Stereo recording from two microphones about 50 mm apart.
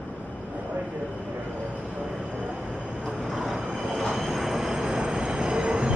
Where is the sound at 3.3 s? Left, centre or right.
Centre.